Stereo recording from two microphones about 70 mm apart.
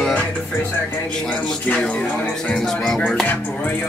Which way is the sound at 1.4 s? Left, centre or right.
Centre.